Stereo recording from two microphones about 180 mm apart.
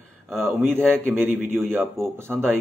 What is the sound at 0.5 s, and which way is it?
Speech, 10° right (ahead or behind).